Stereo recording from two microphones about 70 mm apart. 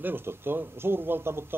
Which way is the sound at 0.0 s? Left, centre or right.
Right.